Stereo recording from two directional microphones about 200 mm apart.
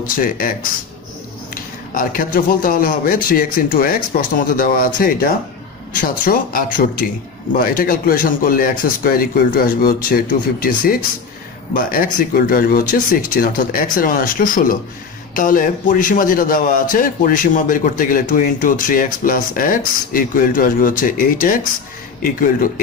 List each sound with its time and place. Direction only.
0.1 s speech: 45° left (ahead or behind)